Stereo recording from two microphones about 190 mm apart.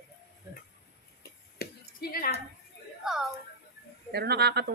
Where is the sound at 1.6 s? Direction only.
50° left (ahead or behind).